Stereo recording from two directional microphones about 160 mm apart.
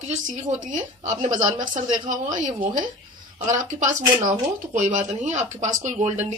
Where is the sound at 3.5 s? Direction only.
50° right (ahead or behind).